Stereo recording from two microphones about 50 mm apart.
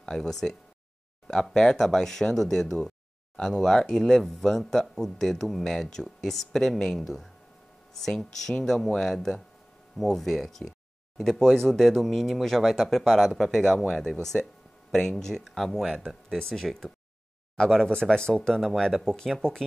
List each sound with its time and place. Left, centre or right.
0.0 s speech: centre